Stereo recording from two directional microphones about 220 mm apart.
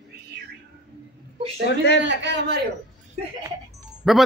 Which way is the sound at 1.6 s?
50° left (ahead or behind).